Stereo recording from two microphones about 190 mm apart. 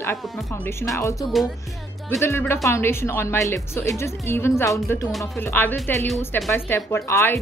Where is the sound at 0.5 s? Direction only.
15° left (ahead or behind).